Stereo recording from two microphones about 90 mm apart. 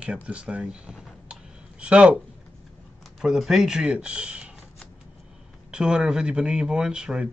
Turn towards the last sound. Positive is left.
turn(degrees=-10)  # may be behind; listen again after turning